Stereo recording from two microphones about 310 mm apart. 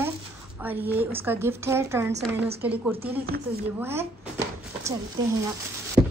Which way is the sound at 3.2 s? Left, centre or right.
Right.